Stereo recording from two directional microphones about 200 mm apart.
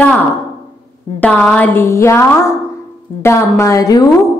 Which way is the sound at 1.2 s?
5° left (ahead or behind).